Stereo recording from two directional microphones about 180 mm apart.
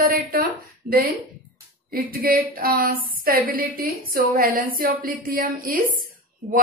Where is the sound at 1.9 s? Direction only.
55° right (ahead or behind).